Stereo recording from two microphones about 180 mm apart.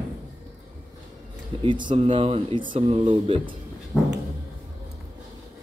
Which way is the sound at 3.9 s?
5° left (ahead or behind).